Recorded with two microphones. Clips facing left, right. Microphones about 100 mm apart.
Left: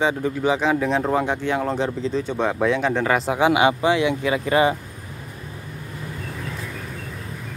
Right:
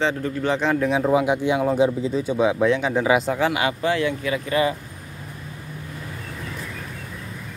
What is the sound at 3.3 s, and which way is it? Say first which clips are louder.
Speech: left 4 dB; 20° left (ahead or behind).